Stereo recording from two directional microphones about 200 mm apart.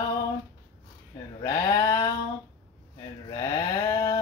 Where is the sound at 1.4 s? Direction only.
15° left (ahead or behind).